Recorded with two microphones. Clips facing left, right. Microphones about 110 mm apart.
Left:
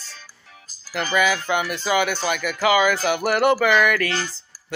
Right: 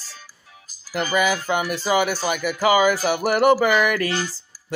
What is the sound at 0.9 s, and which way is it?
Music, 10° right (ahead or behind).